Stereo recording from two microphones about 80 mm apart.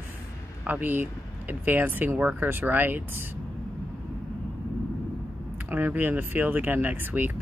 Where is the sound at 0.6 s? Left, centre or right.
Right.